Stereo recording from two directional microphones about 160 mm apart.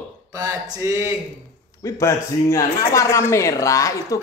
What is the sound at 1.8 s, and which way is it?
Speech, 20° left (ahead or behind).